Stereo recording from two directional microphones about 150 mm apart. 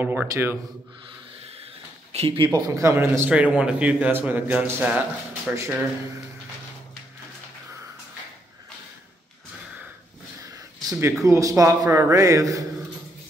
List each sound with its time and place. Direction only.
0.0 s speech: 10° right (ahead or behind)
2.1 s speech: 35° right (ahead or behind)
2.7 s speech: 15° right (ahead or behind)
10.4 s speech: 20° right (ahead or behind)